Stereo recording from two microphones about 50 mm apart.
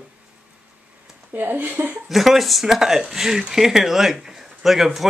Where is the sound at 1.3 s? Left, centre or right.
Right.